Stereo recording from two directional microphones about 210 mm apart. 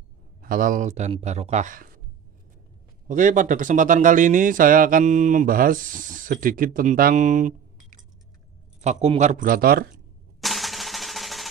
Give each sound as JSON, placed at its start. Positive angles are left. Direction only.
{"t": 0.4, "sound": "speech", "side_deg": -40}
{"t": 3.1, "sound": "speech", "side_deg": -40}
{"t": 10.4, "sound": "drum roll", "side_deg": 0}